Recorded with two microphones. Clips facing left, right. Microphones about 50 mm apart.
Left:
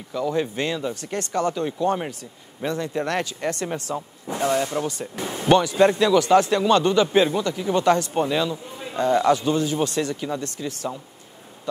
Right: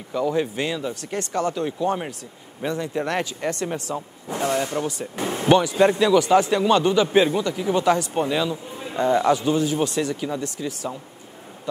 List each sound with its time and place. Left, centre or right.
0.1 s a man's voice: centre
5.2 s speech: right
5.5 s a man's voice: centre